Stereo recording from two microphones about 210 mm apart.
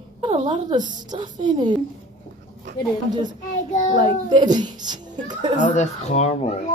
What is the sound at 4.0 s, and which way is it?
A woman's voice, 20° right (ahead or behind).